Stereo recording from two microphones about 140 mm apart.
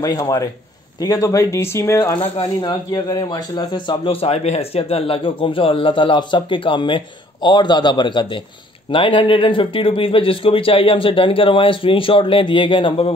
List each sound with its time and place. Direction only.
0.0 s speech: 25° left (ahead or behind)
2.3 s a man's voice: 35° left (ahead or behind)